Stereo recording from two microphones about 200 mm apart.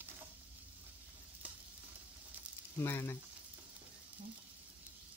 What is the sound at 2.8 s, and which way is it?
Frying, 10° left (ahead or behind).